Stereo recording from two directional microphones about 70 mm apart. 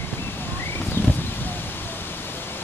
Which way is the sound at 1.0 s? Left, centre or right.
Left.